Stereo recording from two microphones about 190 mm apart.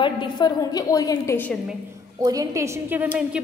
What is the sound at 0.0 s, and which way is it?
A woman's voice, 25° left (ahead or behind).